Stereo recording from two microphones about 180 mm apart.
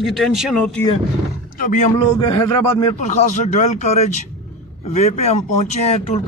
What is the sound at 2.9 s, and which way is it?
Speech, 40° left (ahead or behind).